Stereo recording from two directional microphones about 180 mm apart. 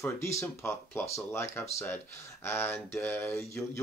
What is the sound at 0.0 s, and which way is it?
Speech, 15° left (ahead or behind).